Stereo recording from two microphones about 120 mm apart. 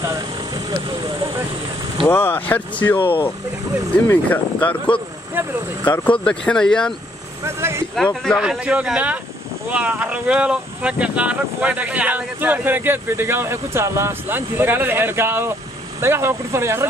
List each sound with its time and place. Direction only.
0.0 s vehicle: 30° right (ahead or behind)
2.0 s speech: 20° left (ahead or behind)
4.1 s speech: 15° left (ahead or behind)
5.3 s speech: 20° right (ahead or behind)
5.9 s speech: 10° left (ahead or behind)
7.4 s speech: 20° right (ahead or behind)
7.9 s speech: 5° left (ahead or behind)
8.4 s speech: 5° right (ahead or behind)